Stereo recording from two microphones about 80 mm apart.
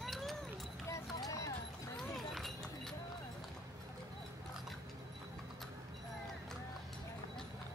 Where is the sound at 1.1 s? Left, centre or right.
Left.